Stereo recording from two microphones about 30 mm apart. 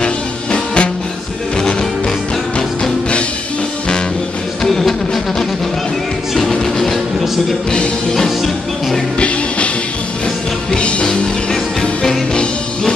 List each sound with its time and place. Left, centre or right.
0.0 s music: left
2.8 s music: left
4.6 s music: centre
6.8 s a sound: centre
10.8 s music: left